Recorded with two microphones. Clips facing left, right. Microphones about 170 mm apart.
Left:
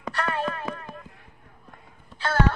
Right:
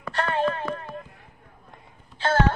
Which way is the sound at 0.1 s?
25° right (ahead or behind).